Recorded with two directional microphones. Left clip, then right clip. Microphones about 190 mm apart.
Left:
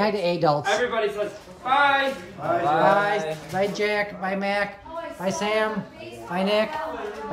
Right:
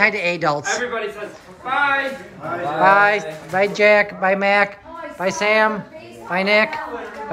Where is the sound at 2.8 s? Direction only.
15° left (ahead or behind).